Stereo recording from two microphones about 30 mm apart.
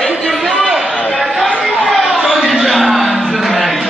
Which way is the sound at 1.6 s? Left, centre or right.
Centre.